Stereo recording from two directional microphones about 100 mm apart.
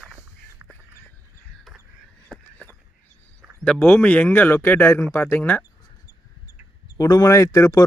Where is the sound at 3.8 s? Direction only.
15° left (ahead or behind).